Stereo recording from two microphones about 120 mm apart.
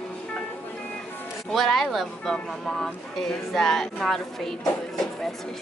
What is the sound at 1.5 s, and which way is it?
Music, centre (ahead or behind).